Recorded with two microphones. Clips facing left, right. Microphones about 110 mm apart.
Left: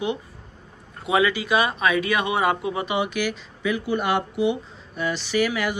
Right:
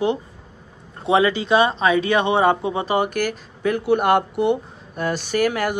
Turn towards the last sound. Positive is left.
turn(degrees=-50)  # may be behind; listen again after turning